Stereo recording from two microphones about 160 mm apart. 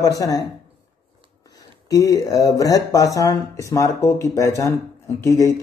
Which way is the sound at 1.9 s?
20° left (ahead or behind).